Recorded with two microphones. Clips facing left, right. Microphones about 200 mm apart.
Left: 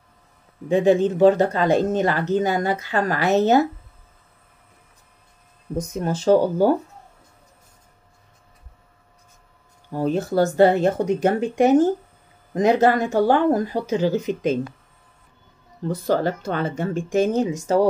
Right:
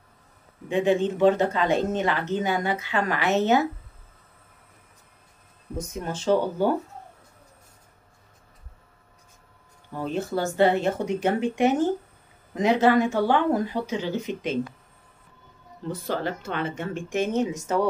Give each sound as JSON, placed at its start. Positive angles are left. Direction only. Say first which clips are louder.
{"t": 0.7, "sound": "speech", "louder": "left 5 dB", "side_deg": 40}
{"t": 5.8, "sound": "speech", "louder": "left 7 dB", "side_deg": 40}
{"t": 9.9, "sound": "speech", "louder": "left 7 dB", "side_deg": 40}
{"t": 15.9, "sound": "speech", "louder": "left 7 dB", "side_deg": 40}